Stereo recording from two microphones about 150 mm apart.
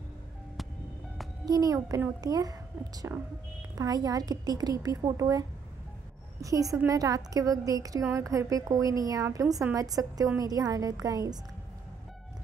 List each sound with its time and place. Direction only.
1.4 s a woman's voice: 25° right (ahead or behind)
6.4 s a woman's voice: 20° right (ahead or behind)